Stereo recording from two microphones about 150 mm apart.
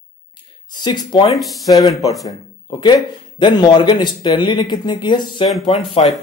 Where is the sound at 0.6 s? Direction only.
30° left (ahead or behind).